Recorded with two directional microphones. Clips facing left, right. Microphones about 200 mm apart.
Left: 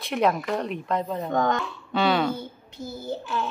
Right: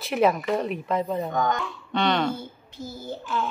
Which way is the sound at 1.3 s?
25° left (ahead or behind).